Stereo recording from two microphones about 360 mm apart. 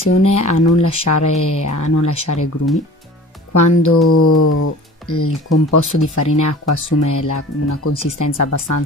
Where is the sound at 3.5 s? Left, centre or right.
Left.